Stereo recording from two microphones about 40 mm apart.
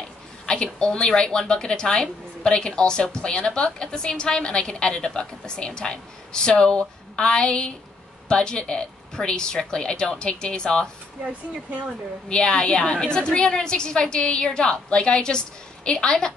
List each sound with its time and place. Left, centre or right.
0.5 s a woman's voice: left
12.3 s a woman's voice: left